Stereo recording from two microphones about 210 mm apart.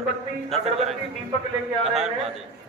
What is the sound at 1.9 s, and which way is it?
Speech, centre (ahead or behind).